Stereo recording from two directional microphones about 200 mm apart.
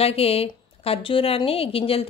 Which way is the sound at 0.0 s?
30° left (ahead or behind).